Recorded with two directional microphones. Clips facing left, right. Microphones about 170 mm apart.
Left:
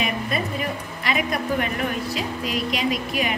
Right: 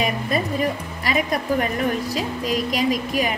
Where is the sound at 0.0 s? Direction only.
40° right (ahead or behind).